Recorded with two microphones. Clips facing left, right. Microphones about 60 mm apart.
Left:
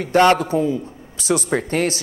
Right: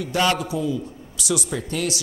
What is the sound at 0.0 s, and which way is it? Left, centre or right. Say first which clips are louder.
A man's voice: left 7 dB; left.